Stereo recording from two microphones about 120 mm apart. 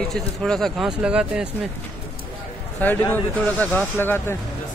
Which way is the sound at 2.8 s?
15° left (ahead or behind).